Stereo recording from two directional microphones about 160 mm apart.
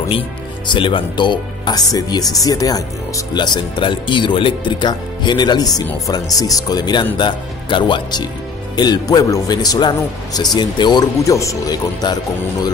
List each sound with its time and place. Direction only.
0.7 s speech: 30° left (ahead or behind)